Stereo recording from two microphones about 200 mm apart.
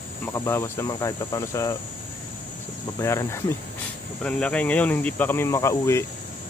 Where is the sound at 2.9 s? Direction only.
15° left (ahead or behind).